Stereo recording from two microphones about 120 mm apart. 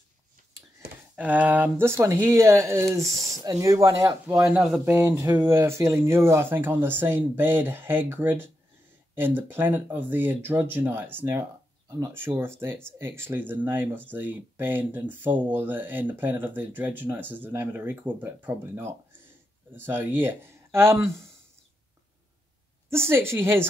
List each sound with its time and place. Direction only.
1.1 s speech: 15° right (ahead or behind)
4.5 s speech: 5° right (ahead or behind)
4.8 s speech: 20° right (ahead or behind)
22.8 s speech: 20° right (ahead or behind)